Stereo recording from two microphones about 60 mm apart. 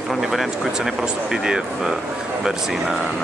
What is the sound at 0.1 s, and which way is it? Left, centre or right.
Speech, centre.